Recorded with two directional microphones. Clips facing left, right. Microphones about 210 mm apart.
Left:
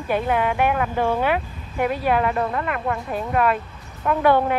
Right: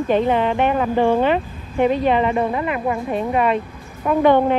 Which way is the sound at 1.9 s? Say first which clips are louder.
Right 3 dB; 5° left (ahead or behind).